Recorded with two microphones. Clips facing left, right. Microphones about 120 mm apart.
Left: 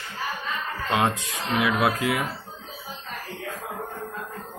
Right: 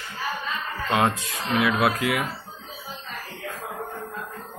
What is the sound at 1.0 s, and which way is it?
Speech, 15° left (ahead or behind).